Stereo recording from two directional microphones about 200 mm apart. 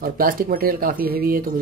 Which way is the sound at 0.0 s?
45° right (ahead or behind).